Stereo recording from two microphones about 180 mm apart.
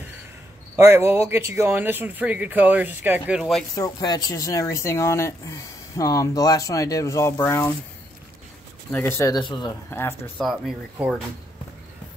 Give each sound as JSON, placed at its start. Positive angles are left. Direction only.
{"t": 0.7, "sound": "speech", "side_deg": -15}
{"t": 3.7, "sound": "speech", "side_deg": 20}
{"t": 8.9, "sound": "speech", "side_deg": 15}
{"t": 9.8, "sound": "speech", "side_deg": 10}
{"t": 10.4, "sound": "speech", "side_deg": -5}